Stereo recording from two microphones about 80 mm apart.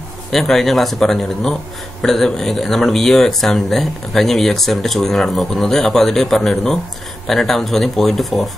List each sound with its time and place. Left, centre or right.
0.3 s speech: centre